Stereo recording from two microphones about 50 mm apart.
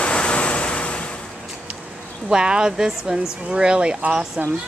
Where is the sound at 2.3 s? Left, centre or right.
Centre.